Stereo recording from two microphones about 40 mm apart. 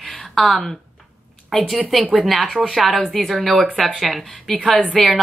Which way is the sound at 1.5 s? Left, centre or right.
Centre.